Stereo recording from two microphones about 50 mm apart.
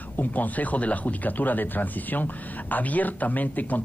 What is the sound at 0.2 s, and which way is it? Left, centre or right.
Speech, left.